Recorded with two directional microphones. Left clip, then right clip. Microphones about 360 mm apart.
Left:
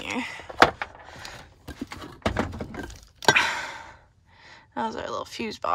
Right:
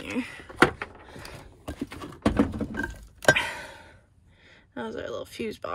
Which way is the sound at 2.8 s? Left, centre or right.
Centre.